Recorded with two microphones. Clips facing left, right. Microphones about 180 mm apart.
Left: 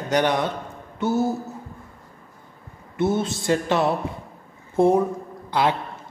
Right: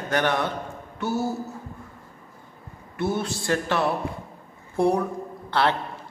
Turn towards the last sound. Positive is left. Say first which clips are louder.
# left 1 dB
turn(degrees=15)  # may be behind; listen again after turning